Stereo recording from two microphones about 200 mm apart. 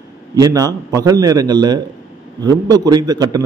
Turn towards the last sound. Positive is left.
turn(degrees=-20)  # may be behind; listen again after turning